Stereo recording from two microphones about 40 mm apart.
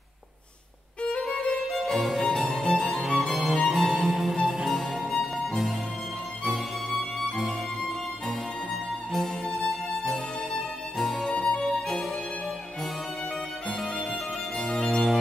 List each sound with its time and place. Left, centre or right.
1.0 s violin: left
1.7 s violin: centre
2.3 s music: centre
6.4 s music: centre
11.0 s music: centre
11.2 s music: centre
14.6 s music: centre
14.9 s music: centre